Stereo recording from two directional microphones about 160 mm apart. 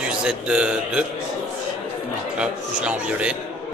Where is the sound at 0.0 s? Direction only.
5° right (ahead or behind).